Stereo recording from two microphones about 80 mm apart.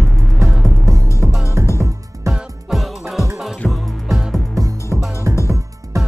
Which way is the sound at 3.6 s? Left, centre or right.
Centre.